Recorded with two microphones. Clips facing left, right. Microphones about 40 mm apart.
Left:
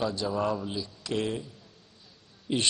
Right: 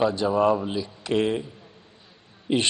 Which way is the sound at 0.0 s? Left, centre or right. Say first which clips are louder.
Right 8 dB; right.